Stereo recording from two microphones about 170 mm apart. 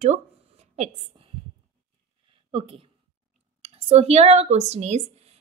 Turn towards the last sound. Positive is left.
turn(degrees=-40)  # may be behind; listen again after turning